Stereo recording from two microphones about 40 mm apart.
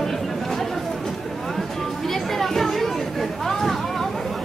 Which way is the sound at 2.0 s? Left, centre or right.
Centre.